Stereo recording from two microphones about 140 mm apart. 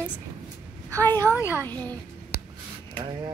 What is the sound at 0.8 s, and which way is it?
Speech, 20° right (ahead or behind).